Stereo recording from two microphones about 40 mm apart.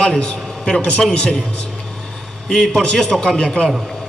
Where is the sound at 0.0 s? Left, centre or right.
Left.